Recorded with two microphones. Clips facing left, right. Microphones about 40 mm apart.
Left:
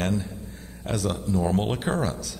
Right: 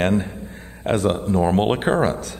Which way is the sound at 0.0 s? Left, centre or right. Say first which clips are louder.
Right 7 dB; right.